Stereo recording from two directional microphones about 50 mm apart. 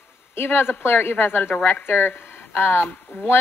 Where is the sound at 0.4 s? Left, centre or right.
Left.